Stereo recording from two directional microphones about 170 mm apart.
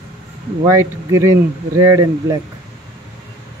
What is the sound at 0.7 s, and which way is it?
Speech, 15° right (ahead or behind).